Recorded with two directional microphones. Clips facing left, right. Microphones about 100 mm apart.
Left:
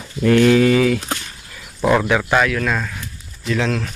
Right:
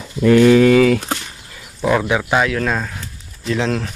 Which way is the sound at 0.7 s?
70° right (ahead or behind).